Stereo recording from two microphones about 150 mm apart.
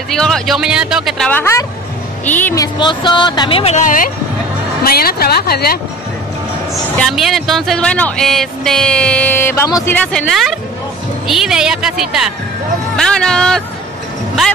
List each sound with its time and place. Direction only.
0.1 s speech: 5° left (ahead or behind)
1.4 s a man's voice: 20° left (ahead or behind)
2.5 s speech: 30° left (ahead or behind)
3.8 s speech: 65° left (ahead or behind)
4.8 s speech: 90° left
6.7 s a man's voice: centre (ahead or behind); by 9.9 s 20° left (ahead or behind)
10.2 s speech: centre (ahead or behind)